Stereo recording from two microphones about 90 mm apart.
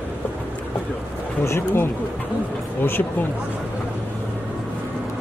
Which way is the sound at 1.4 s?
30° left (ahead or behind).